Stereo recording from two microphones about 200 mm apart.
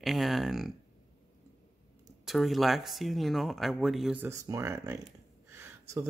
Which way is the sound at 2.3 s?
Centre (ahead or behind).